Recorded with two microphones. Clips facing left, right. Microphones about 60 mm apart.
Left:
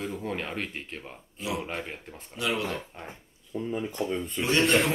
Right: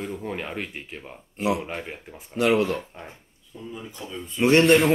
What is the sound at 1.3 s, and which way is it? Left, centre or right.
Speech, right.